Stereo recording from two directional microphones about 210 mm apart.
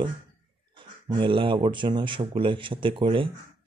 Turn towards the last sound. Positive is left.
turn(degrees=-25)  # may be behind; listen again after turning